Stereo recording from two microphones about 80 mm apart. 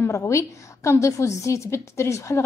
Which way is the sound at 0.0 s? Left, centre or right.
Left.